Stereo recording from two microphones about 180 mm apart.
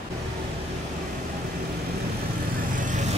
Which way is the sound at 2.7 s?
45° right (ahead or behind).